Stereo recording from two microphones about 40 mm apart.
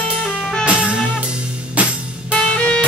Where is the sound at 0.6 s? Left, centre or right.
Right.